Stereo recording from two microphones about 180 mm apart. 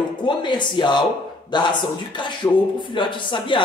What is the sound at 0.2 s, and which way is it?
Speech, 25° left (ahead or behind).